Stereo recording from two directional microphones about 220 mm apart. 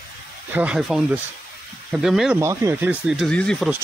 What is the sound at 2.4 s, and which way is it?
Speech, 15° right (ahead or behind).